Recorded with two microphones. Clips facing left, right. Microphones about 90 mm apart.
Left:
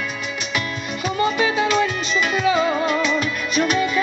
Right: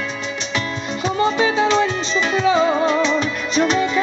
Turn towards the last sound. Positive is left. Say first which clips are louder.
# right 2 dB
turn(degrees=-30)  # may be behind; listen again after turning